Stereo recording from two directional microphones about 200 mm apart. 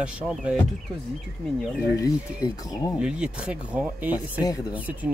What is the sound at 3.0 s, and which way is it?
Speech, 5° right (ahead or behind).